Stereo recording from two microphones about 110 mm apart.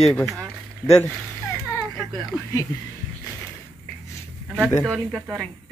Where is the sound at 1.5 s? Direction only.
20° left (ahead or behind).